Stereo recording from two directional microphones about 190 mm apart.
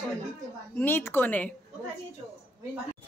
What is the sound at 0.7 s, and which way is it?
Speech, 10° left (ahead or behind).